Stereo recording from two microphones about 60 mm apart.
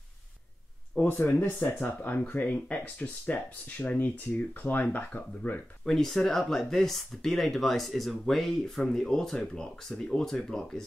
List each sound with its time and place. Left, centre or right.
1.0 s speech: left
5.9 s speech: centre